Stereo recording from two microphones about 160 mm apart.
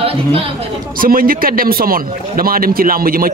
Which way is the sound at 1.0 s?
60° right (ahead or behind).